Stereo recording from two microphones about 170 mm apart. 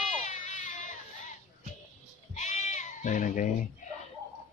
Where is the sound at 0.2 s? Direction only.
45° left (ahead or behind).